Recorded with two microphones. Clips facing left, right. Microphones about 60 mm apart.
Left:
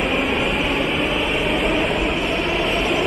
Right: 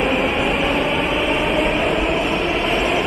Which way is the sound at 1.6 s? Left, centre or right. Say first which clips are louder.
Right 2 dB; centre.